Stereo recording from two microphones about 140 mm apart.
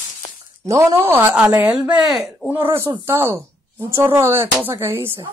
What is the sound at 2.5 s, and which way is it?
A woman's voice, 15° right (ahead or behind).